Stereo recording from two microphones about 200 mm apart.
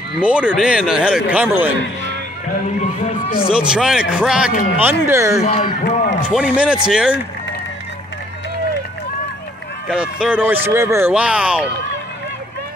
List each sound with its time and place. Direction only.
0.1 s speech: 5° right (ahead or behind)
3.5 s speech: 5° right (ahead or behind)
5.4 s speech: 30° left (ahead or behind)
6.2 s speech: 5° right (ahead or behind)
9.8 s speech: 5° right (ahead or behind)